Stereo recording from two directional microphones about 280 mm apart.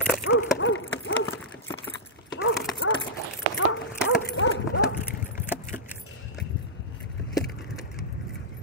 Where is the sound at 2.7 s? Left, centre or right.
Left.